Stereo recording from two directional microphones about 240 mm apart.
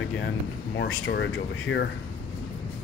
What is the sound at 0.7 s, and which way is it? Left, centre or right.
Speech, left.